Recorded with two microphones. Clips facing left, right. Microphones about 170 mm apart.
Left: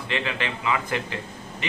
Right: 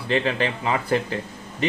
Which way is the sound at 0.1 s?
35° right (ahead or behind).